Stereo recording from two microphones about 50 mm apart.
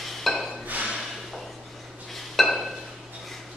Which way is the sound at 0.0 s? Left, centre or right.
Centre.